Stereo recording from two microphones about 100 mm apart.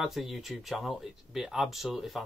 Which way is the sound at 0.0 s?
5° right (ahead or behind).